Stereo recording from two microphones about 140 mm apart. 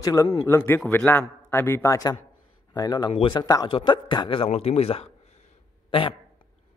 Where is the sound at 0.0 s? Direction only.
20° left (ahead or behind).